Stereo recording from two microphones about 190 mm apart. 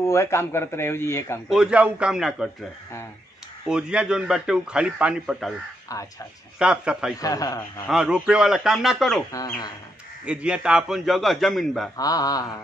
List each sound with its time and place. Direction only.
0.0 s a man's voice: 15° left (ahead or behind)
1.5 s a man's voice: 5° right (ahead or behind)
3.6 s a man's voice: 5° right (ahead or behind)
6.6 s a man's voice: 5° right (ahead or behind)
7.2 s mantra: 20° left (ahead or behind)
7.9 s a man's voice: 5° right (ahead or behind)
9.3 s a man's voice: 20° left (ahead or behind)
10.2 s a man's voice: 5° right (ahead or behind)
12.0 s mantra: 20° left (ahead or behind)